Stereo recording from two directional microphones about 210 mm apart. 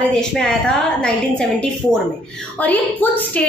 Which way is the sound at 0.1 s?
5° left (ahead or behind).